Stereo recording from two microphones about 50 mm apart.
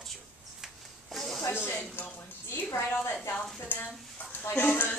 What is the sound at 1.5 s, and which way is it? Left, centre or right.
Speech, left.